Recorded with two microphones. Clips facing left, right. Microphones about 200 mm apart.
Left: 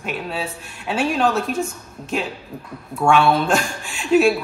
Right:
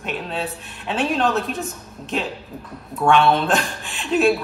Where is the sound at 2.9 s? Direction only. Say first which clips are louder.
Even; centre (ahead or behind).